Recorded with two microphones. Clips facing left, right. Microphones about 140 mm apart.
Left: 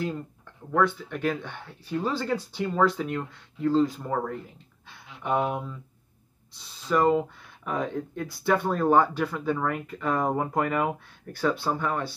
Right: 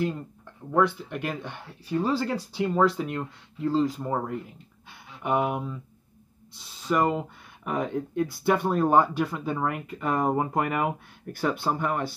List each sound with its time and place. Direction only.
0.7 s speech: 10° right (ahead or behind)
6.9 s speech: 15° right (ahead or behind)